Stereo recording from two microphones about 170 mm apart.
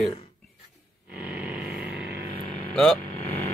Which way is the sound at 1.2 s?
10° right (ahead or behind).